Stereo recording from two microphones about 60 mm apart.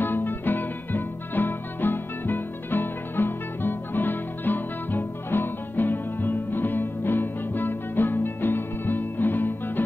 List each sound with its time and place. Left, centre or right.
0.0 s music: left